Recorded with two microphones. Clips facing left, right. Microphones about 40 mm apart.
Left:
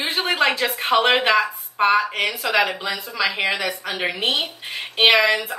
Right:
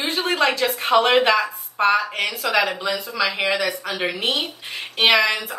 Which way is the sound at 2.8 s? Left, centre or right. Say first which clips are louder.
Right 2 dB; left.